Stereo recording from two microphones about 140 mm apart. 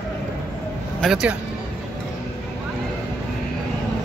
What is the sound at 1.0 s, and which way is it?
Speech, 5° right (ahead or behind).